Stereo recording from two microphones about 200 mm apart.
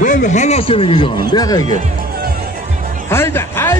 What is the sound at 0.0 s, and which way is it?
A man's voice, 40° left (ahead or behind).